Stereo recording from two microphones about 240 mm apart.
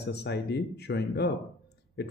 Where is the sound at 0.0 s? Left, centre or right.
Left.